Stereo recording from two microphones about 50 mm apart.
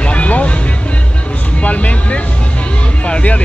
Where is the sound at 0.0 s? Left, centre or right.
Left.